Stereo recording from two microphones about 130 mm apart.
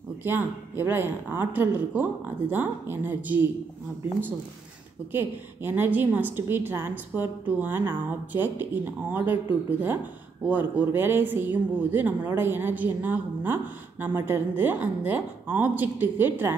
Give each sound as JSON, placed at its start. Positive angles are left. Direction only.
{"t": 0.2, "sound": "a woman's voice", "side_deg": -15}
{"t": 5.1, "sound": "a woman's voice", "side_deg": -15}